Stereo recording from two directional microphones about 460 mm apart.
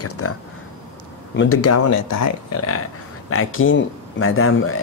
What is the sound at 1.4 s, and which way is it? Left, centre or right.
Speech, left.